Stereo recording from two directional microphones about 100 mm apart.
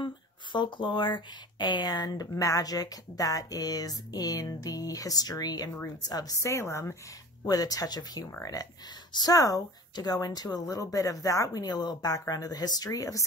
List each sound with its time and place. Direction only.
0.0 s speech: 50° left (ahead or behind); by 7.0 s 30° left (ahead or behind)
7.4 s speech: 40° left (ahead or behind)